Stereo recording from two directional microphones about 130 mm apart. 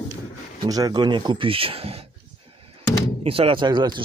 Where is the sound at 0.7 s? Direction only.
30° right (ahead or behind); by 2.1 s 50° right (ahead or behind).